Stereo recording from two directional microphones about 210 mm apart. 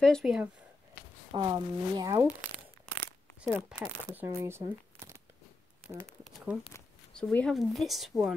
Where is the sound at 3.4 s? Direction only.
5° right (ahead or behind).